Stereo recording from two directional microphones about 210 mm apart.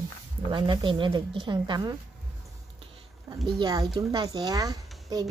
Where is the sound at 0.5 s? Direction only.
20° right (ahead or behind).